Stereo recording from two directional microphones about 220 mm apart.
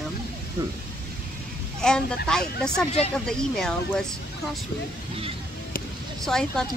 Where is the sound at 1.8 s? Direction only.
5° left (ahead or behind).